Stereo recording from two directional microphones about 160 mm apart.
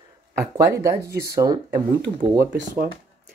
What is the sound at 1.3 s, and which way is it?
Speech, 25° right (ahead or behind).